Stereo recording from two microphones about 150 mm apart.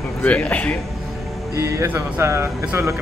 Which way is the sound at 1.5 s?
20° right (ahead or behind).